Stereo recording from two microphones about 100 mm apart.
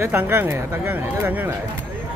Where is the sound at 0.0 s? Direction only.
20° right (ahead or behind).